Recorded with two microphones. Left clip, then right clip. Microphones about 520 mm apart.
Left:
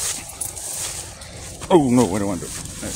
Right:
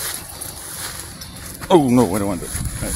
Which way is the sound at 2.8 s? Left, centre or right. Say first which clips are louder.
Right 3 dB; right.